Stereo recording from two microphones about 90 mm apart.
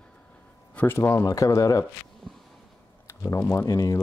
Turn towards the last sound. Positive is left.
turn(degrees=40)  # may be behind; listen again after turning